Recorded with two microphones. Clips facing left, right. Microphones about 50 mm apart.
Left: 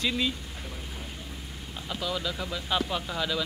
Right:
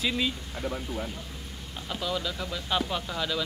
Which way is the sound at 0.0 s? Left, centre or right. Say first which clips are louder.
Even; centre.